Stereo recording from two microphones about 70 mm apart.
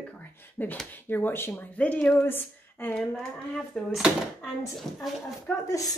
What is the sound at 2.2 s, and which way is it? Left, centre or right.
Speech, left.